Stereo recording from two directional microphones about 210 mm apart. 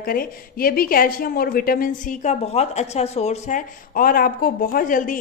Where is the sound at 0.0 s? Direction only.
45° left (ahead or behind).